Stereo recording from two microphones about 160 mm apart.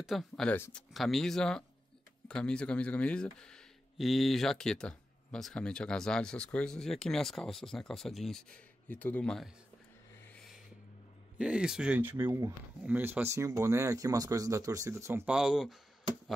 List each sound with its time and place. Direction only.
0.0 s speech: centre (ahead or behind)
10.3 s a sound: centre (ahead or behind)
11.3 s speech: 5° right (ahead or behind)
15.3 s speech: 5° right (ahead or behind)